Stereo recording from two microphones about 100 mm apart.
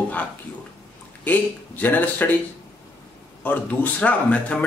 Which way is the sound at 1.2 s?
15° left (ahead or behind).